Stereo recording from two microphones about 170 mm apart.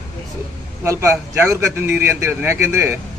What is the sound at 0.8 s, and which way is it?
A man's voice, 15° right (ahead or behind).